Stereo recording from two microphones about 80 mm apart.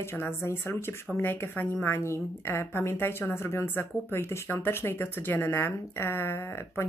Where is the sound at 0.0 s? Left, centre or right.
Left.